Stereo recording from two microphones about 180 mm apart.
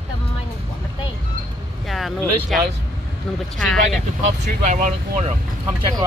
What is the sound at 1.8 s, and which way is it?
Speech, centre (ahead or behind).